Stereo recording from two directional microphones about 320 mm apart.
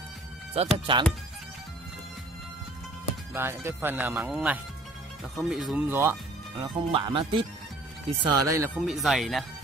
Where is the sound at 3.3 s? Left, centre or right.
Centre.